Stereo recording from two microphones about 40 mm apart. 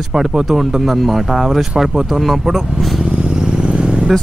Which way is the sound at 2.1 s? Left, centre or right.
Centre.